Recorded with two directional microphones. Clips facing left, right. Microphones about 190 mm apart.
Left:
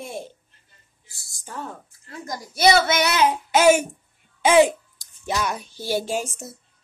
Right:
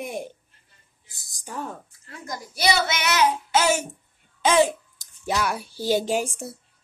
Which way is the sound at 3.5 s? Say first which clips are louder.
Left 6 dB; 15° left (ahead or behind).